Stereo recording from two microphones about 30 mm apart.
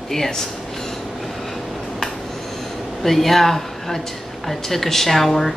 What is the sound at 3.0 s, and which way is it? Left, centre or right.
Speech, centre.